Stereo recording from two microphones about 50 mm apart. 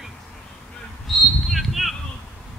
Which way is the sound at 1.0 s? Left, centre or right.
Centre.